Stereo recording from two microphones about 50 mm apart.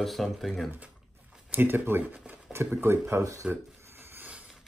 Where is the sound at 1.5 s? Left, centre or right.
Right.